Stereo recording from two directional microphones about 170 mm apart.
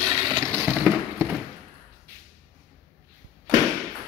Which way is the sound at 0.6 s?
Centre (ahead or behind).